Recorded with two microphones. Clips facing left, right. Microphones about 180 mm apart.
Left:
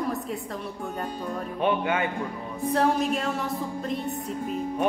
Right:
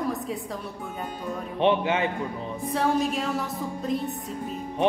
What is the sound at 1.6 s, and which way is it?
Speech, 25° right (ahead or behind).